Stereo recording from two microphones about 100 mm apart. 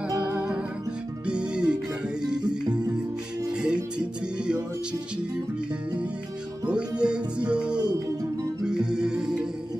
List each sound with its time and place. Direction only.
0.3 s music: 15° right (ahead or behind)
3.6 s music: 10° right (ahead or behind)
6.7 s music: 10° right (ahead or behind)
7.8 s music: 45° right (ahead or behind)
8.6 s music: 5° right (ahead or behind)